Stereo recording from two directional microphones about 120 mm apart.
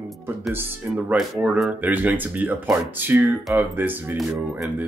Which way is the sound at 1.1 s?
5° right (ahead or behind).